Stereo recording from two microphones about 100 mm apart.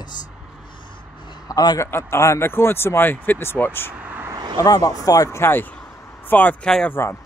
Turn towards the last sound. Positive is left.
turn(degrees=20)  # may be behind; listen again after turning